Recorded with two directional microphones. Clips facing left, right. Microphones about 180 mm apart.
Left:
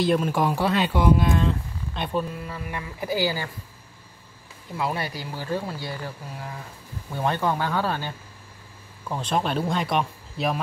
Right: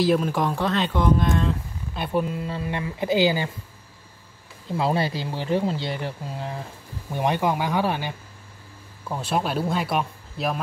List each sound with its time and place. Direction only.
0.0 s speech: centre (ahead or behind)
2.1 s speech: 20° right (ahead or behind)
4.6 s speech: 30° right (ahead or behind)
9.1 s speech: 5° right (ahead or behind)